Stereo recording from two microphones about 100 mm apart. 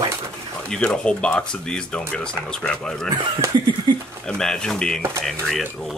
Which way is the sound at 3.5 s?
45° right (ahead or behind).